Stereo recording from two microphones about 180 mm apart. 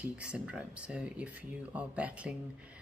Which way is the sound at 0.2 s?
5° right (ahead or behind).